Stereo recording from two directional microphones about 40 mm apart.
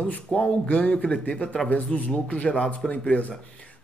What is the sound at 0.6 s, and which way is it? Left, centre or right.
Speech, left.